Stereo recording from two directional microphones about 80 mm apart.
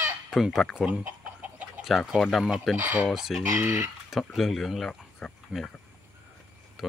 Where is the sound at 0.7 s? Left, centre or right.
Centre.